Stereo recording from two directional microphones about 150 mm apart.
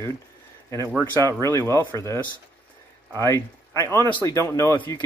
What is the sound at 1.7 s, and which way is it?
Speech, 15° left (ahead or behind).